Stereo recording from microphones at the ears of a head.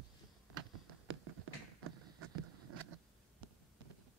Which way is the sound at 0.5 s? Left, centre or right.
Right.